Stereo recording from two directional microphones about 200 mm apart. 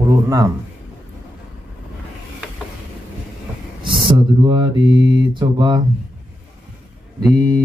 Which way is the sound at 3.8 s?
25° right (ahead or behind).